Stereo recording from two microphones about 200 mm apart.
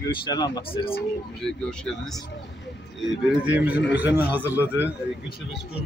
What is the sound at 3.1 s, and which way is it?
A man's voice, 5° right (ahead or behind).